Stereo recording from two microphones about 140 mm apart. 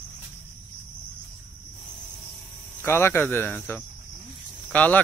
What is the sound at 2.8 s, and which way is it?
Cricket, 20° left (ahead or behind).